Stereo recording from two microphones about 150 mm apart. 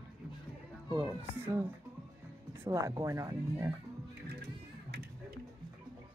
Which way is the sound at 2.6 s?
20° right (ahead or behind).